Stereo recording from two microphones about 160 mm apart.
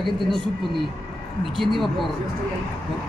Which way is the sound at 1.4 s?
Centre (ahead or behind).